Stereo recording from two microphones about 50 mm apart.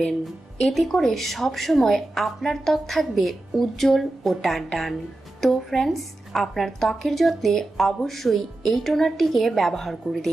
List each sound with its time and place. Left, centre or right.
0.7 s speech: centre